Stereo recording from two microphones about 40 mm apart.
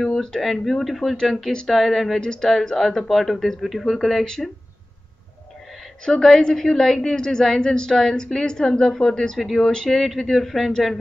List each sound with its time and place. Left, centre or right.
0.2 s speech: centre
2.1 s a woman's voice: centre
6.2 s a woman's voice: centre